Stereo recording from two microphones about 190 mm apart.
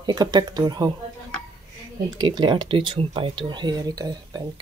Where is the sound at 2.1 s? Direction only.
20° right (ahead or behind).